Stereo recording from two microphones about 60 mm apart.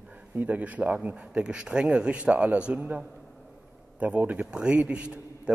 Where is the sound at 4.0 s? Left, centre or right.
Right.